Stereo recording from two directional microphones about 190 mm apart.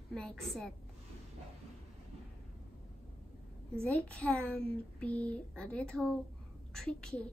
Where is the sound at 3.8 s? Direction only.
5° left (ahead or behind).